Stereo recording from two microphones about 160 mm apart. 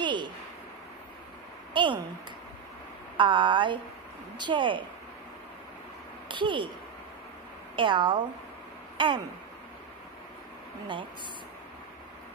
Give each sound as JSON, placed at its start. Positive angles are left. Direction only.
{"t": 0.0, "sound": "a sound", "side_deg": -30}
{"t": 1.7, "sound": "speech", "side_deg": -30}
{"t": 3.2, "sound": "a woman's voice", "side_deg": -30}
{"t": 6.2, "sound": "speech", "side_deg": -30}
{"t": 7.7, "sound": "speech", "side_deg": -30}
{"t": 8.9, "sound": "a sound", "side_deg": -30}